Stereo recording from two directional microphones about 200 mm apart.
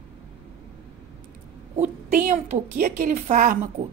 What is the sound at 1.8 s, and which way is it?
A woman's voice, 35° right (ahead or behind).